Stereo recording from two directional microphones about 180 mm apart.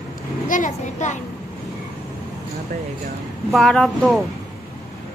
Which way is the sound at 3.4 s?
Centre (ahead or behind).